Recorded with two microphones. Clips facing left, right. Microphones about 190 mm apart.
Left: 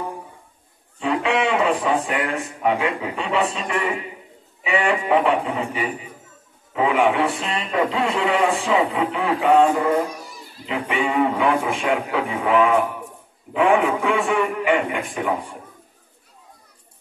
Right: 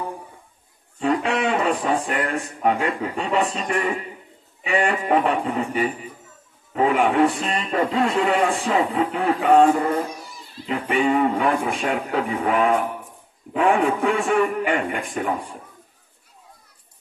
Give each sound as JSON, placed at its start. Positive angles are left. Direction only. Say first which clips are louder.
{"t": 0.9, "sound": "a man's voice", "louder": "even", "side_deg": -40}
{"t": 10.7, "sound": "speech", "louder": "right 3 dB", "side_deg": -45}